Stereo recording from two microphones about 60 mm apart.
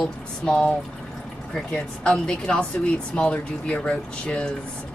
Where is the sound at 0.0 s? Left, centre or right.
Centre.